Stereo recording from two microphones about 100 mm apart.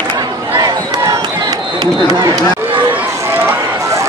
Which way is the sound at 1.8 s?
45° right (ahead or behind).